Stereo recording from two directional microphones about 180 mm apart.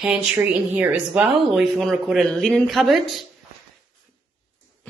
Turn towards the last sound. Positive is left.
turn(degrees=0)  # may be behind; listen again after turning